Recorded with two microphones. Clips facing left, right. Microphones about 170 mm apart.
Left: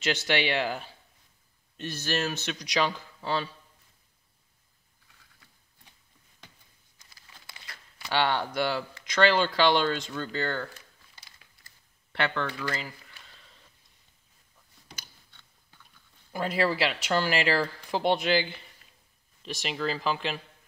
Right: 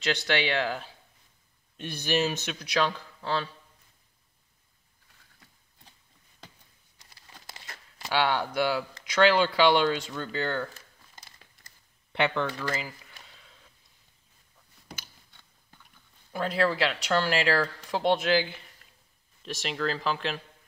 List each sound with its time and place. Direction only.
0.0 s speech: 5° left (ahead or behind)
1.8 s speech: 15° right (ahead or behind)
2.5 s speech: centre (ahead or behind)
7.0 s crumpling: 40° right (ahead or behind)
8.1 s speech: 5° right (ahead or behind)
11.1 s crumpling: 40° right (ahead or behind)
12.1 s speech: 15° right (ahead or behind)
12.6 s speech: 5° right (ahead or behind)
13.4 s a sound: centre (ahead or behind)
16.3 s speech: 5° left (ahead or behind)